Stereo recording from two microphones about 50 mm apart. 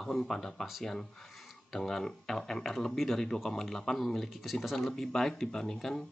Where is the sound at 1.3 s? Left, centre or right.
Centre.